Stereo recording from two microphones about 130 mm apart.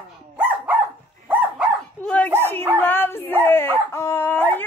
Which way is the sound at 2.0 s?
10° left (ahead or behind).